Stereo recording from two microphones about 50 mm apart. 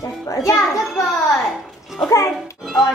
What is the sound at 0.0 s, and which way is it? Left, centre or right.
Speech, left.